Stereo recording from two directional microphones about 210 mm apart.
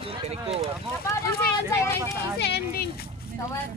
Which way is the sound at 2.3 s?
50° left (ahead or behind).